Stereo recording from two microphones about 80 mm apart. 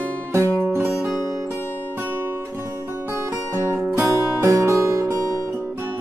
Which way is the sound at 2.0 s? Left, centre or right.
Right.